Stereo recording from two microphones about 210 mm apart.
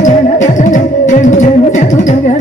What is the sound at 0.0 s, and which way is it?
Music, 35° left (ahead or behind).